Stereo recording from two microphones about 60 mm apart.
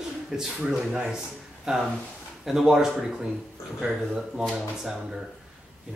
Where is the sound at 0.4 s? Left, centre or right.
Centre.